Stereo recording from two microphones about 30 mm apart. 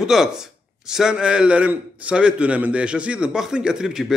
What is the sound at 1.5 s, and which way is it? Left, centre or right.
Speech, right.